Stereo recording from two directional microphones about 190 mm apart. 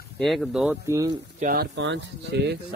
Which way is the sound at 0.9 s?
20° right (ahead or behind).